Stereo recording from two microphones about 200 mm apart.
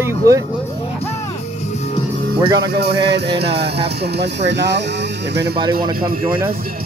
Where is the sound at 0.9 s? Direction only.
30° left (ahead or behind).